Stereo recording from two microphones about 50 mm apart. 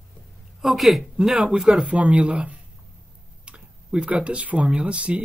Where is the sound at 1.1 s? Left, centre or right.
Centre.